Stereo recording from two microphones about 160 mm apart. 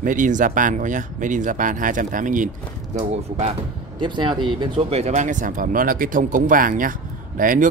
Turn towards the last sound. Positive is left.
turn(degrees=-60)  # may be behind; listen again after turning